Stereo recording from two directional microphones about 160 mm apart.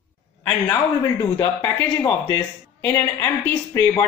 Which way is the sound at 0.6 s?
20° left (ahead or behind).